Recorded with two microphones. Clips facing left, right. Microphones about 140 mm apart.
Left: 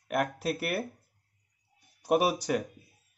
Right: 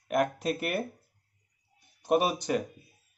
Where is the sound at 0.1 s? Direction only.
5° left (ahead or behind).